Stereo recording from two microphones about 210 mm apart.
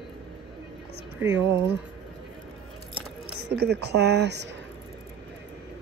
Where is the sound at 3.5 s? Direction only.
50° right (ahead or behind).